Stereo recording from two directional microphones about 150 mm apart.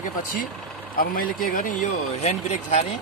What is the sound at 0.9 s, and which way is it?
Speech, 70° left (ahead or behind).